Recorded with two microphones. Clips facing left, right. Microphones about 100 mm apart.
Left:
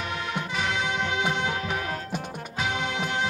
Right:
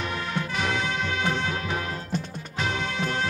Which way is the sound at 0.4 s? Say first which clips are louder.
Right 1 dB; 15° left (ahead or behind).